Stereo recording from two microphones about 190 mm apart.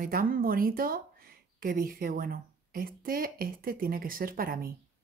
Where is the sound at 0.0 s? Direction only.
50° right (ahead or behind).